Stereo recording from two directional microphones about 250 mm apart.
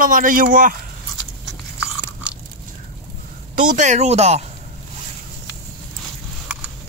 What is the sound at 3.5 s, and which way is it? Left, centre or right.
Speech, right.